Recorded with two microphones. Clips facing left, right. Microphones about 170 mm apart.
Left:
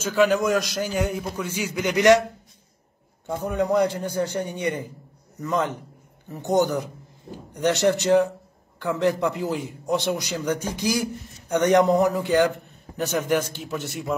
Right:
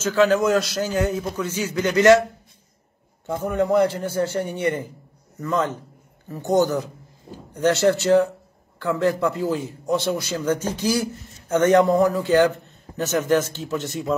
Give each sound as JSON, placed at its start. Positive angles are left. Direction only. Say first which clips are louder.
{"t": 0.0, "sound": "a man's voice", "louder": "right 2 dB", "side_deg": 15}
{"t": 3.4, "sound": "a man's voice", "louder": "right 2 dB", "side_deg": 15}